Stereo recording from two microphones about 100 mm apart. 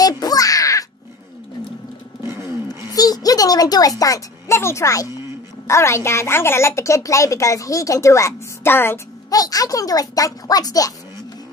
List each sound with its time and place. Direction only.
0.0 s caw: 40° left (ahead or behind)
2.2 s a sound: 25° right (ahead or behind)
2.9 s a woman's voice: 40° left (ahead or behind); by 9.0 s 25° left (ahead or behind)
9.3 s speech: 40° left (ahead or behind)